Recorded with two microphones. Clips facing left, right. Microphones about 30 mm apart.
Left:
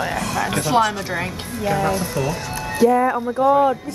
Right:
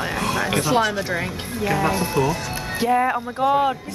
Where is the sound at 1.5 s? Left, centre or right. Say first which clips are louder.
Left 1 dB; centre.